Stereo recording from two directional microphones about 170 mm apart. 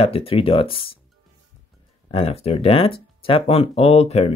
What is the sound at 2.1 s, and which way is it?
Speech, 35° left (ahead or behind).